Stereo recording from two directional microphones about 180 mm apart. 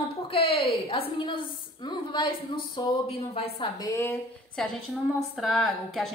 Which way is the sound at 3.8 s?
15° left (ahead or behind).